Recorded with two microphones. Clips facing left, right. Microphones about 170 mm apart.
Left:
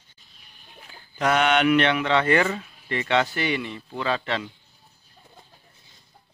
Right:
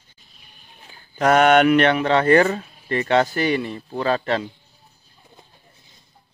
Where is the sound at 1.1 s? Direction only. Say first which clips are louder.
Right 6 dB; 45° right (ahead or behind).